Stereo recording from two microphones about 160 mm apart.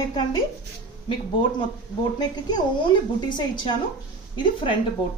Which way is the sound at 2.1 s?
25° left (ahead or behind).